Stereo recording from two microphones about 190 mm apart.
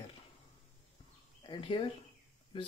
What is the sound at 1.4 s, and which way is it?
Speech, 20° left (ahead or behind).